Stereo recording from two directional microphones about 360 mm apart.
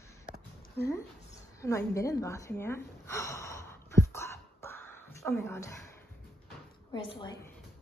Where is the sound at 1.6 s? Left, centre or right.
Centre.